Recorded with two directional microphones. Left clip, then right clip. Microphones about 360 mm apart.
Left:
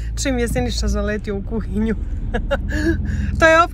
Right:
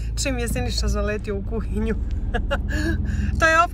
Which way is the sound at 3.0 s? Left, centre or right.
Left.